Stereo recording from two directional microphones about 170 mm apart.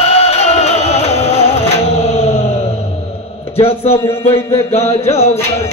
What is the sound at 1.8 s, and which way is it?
Music, 40° left (ahead or behind).